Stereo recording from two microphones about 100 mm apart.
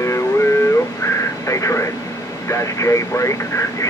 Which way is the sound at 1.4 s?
30° left (ahead or behind).